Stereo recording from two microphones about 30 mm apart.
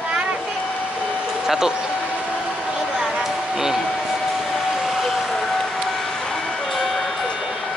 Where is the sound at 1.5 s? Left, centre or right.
Centre.